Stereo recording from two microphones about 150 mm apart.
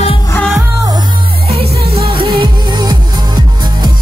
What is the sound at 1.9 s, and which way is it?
Music, 40° right (ahead or behind).